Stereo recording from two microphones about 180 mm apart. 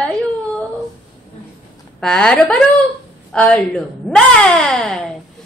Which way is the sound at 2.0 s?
5° left (ahead or behind).